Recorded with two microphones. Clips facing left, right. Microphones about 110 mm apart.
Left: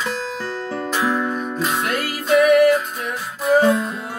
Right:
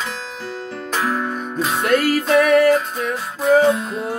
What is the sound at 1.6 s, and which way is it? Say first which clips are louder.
Music: right 7 dB; centre (ahead or behind).